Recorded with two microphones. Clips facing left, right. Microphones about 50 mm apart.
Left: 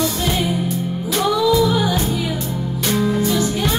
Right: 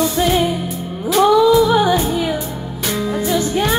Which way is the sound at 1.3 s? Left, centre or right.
Right.